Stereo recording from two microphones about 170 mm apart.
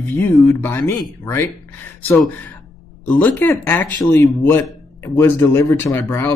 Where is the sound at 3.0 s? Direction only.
10° left (ahead or behind).